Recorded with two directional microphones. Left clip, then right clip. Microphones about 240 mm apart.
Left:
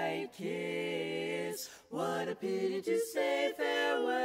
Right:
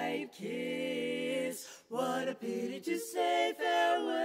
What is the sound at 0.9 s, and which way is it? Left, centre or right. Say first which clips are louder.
A capella: right 1 dB; centre.